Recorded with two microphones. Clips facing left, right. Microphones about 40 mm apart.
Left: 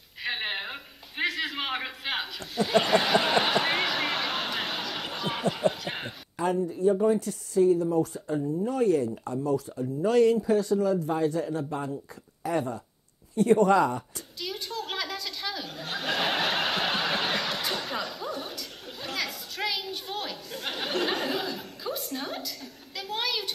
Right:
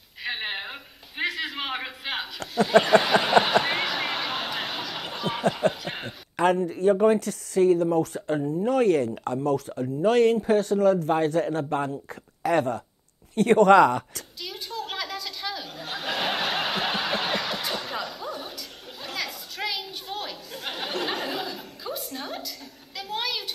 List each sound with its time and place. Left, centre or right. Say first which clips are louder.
0.2 s a sound: even; centre
6.3 s speech: right 5 dB; right
14.4 s chuckle: even; centre